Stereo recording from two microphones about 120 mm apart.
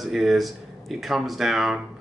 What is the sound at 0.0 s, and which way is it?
Speech, centre (ahead or behind).